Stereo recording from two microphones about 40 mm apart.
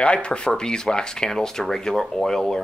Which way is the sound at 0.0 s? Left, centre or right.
Left.